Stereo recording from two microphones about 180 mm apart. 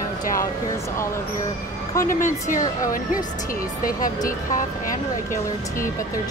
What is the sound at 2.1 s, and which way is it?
A woman's voice, 45° left (ahead or behind).